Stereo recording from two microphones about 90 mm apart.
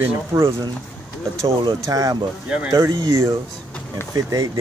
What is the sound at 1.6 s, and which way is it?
Speech, 55° right (ahead or behind).